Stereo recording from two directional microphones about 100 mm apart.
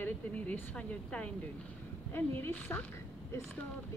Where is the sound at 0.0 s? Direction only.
15° left (ahead or behind).